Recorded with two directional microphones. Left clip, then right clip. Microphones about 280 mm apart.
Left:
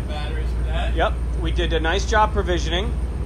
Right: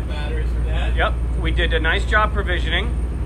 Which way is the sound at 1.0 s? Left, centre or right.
Centre.